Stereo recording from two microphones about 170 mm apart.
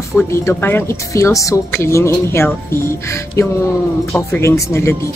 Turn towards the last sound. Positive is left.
turn(degrees=15)  # may be behind; listen again after turning